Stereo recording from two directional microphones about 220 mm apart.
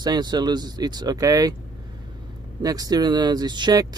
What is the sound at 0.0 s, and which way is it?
Speech, 20° right (ahead or behind).